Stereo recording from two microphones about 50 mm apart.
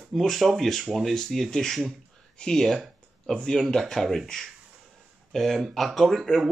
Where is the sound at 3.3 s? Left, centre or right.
Centre.